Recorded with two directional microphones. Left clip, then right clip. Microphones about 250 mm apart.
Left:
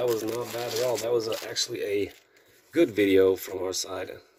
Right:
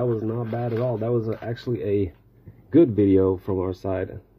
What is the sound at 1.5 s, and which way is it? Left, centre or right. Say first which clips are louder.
Speech: right 5 dB; centre.